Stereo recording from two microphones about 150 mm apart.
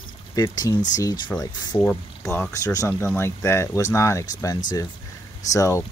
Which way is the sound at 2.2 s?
20° left (ahead or behind).